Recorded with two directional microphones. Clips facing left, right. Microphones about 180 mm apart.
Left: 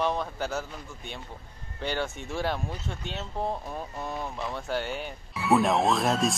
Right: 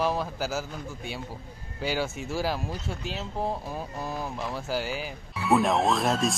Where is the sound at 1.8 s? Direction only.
5° right (ahead or behind).